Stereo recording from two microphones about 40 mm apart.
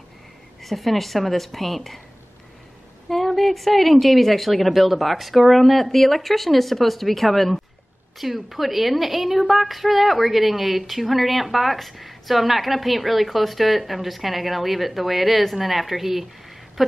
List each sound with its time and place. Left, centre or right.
0.6 s a woman's voice: centre
3.1 s a woman's voice: centre